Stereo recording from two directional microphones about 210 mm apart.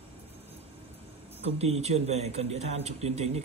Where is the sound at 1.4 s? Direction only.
30° right (ahead or behind).